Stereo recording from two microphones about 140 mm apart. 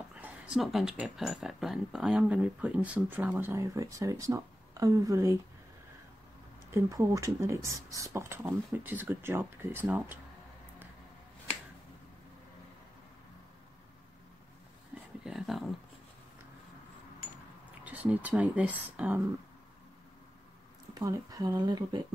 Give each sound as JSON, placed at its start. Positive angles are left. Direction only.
{"t": 0.1, "sound": "a sound", "side_deg": -10}
{"t": 0.6, "sound": "speech", "side_deg": 0}
{"t": 6.7, "sound": "speech", "side_deg": -20}
{"t": 15.2, "sound": "a sound", "side_deg": 0}
{"t": 17.8, "sound": "speech", "side_deg": -10}
{"t": 20.9, "sound": "speech", "side_deg": -25}